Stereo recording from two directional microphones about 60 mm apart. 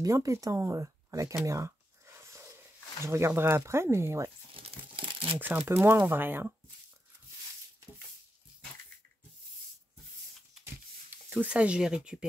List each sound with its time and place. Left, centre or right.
0.0 s speech: right
1.4 s a sound: right
3.0 s speech: right
5.4 s speech: right
11.3 s speech: right